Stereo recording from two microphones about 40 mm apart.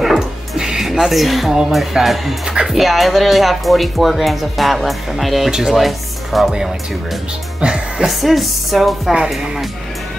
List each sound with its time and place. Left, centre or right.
0.6 s music: centre
0.8 s speech: centre
2.4 s speech: centre
2.7 s speech: centre
5.5 s speech: centre
5.8 s speech: centre
7.6 s speech: right
8.0 s speech: centre